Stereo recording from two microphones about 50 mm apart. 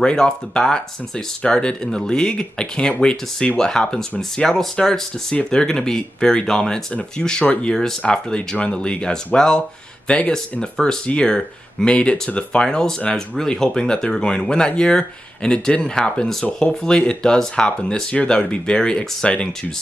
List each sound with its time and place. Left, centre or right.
0.0 s speech: centre
6.9 s speech: left